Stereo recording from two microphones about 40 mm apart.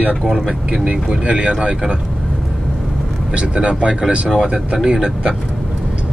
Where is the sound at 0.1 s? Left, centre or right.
Centre.